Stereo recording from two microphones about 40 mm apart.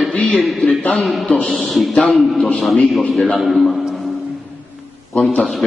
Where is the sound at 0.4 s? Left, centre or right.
Centre.